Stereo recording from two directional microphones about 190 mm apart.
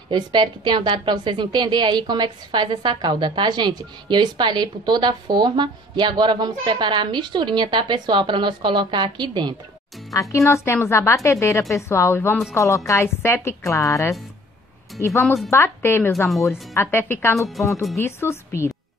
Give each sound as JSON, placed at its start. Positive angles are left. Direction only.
{"t": 0.1, "sound": "a woman's voice", "side_deg": -25}
{"t": 10.1, "sound": "speech", "side_deg": 15}
{"t": 17.4, "sound": "speech", "side_deg": 0}
{"t": 17.9, "sound": "speech", "side_deg": 15}